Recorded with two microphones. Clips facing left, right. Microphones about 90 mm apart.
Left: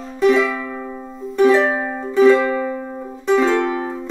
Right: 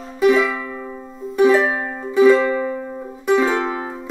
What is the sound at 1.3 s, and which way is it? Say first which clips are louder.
Music: left 1 dB; 5° right (ahead or behind).